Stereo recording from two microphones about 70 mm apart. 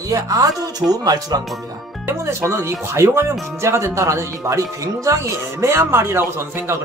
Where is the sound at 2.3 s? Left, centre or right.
Right.